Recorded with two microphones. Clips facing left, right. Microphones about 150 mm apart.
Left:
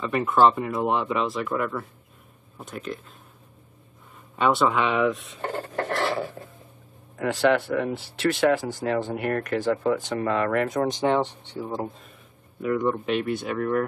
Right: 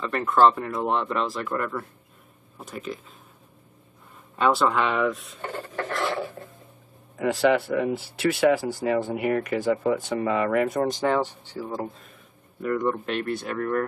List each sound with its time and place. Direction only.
0.0 s speech: 5° left (ahead or behind)
4.4 s speech: centre (ahead or behind)
5.4 s filing: 40° left (ahead or behind)
7.2 s speech: centre (ahead or behind)
11.0 s speech: 25° left (ahead or behind)
11.6 s speech: centre (ahead or behind)